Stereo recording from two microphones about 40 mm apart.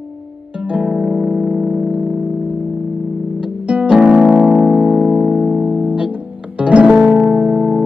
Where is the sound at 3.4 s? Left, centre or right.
Right.